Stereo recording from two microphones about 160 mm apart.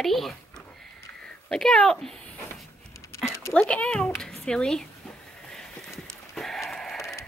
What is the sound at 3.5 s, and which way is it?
Speech, 5° left (ahead or behind).